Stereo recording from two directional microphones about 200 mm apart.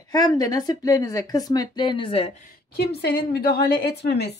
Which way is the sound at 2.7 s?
55° left (ahead or behind).